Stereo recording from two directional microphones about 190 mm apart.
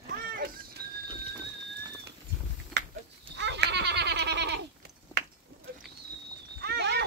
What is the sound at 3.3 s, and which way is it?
Goat, 65° right (ahead or behind).